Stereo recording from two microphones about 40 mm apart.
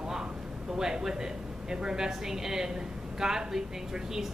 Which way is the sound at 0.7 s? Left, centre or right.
Centre.